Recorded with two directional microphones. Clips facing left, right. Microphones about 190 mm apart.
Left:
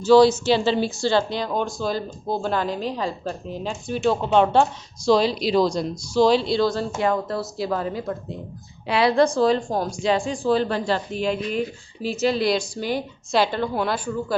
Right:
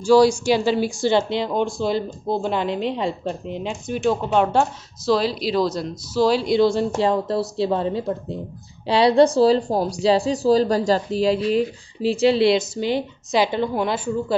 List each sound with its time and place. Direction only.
0.0 s speech: 10° right (ahead or behind)